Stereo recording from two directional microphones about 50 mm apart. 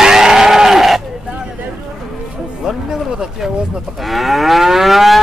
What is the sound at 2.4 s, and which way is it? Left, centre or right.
Livestock, centre.